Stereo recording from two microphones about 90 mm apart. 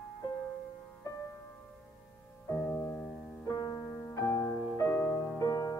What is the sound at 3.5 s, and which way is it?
Music, 40° left (ahead or behind).